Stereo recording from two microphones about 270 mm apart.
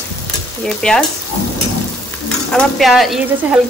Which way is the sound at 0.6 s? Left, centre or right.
Centre.